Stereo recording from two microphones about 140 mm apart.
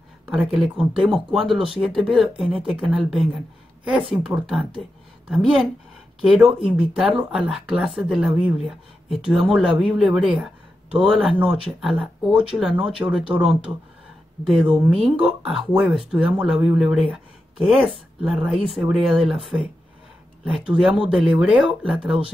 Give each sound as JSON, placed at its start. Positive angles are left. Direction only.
{"t": 0.3, "sound": "speech", "side_deg": -5}
{"t": 20.4, "sound": "speech", "side_deg": -5}